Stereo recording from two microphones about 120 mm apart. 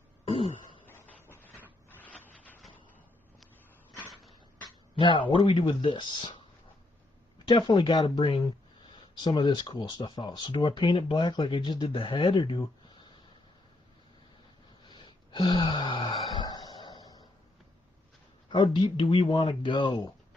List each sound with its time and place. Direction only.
0.2 s throat clearing: 55° left (ahead or behind)
0.8 s printer: 15° left (ahead or behind)
4.1 s a sound: centre (ahead or behind)
4.9 s speech: 45° left (ahead or behind)
7.4 s speech: 40° left (ahead or behind)
14.9 s a sound: 40° left (ahead or behind)
18.5 s speech: 45° left (ahead or behind)